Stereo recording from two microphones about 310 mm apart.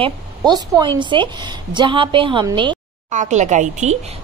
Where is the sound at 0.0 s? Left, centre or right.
Centre.